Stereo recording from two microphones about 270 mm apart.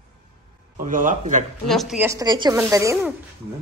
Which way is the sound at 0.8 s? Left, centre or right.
Right.